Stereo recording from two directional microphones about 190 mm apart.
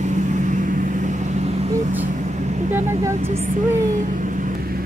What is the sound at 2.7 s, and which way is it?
Speech, 15° right (ahead or behind).